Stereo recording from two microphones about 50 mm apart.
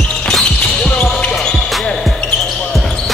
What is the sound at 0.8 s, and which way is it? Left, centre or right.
Basketball bounce, left.